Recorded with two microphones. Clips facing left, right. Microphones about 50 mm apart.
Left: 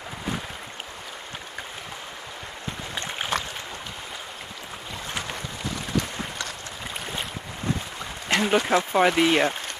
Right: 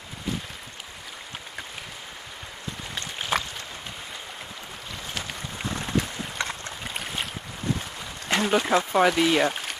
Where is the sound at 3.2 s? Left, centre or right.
Left.